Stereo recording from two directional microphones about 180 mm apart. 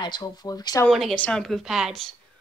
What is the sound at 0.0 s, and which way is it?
Speech, 25° left (ahead or behind).